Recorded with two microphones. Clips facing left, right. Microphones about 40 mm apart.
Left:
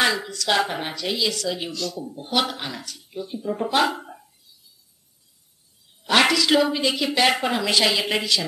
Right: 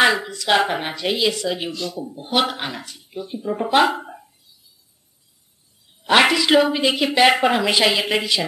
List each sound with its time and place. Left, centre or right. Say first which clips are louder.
0.0 s speech: right 5 dB; right
6.0 s speech: right 3 dB; centre